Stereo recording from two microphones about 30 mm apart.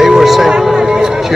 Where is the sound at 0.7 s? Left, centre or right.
Right.